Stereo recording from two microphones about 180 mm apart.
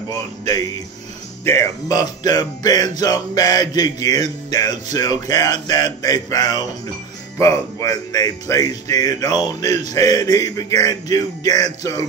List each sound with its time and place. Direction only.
0.1 s speech: 20° left (ahead or behind)